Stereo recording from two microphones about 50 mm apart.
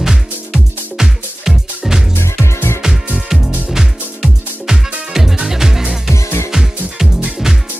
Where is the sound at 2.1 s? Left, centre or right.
Left.